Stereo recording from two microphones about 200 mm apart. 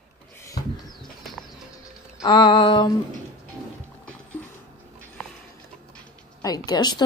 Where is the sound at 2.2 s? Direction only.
20° left (ahead or behind).